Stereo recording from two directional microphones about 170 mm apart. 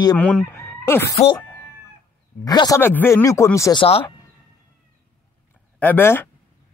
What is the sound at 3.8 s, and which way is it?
Speech, 30° left (ahead or behind).